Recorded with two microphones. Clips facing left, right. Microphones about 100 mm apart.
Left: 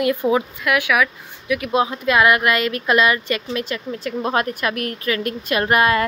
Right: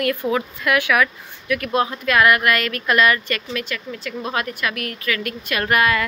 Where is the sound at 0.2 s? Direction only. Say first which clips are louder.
Left 4 dB; 25° left (ahead or behind).